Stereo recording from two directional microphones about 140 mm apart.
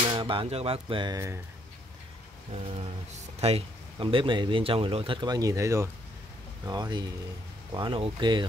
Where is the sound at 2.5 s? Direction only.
50° right (ahead or behind); by 8.5 s 35° right (ahead or behind).